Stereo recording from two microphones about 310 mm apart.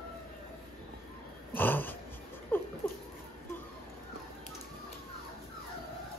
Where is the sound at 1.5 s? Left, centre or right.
Centre.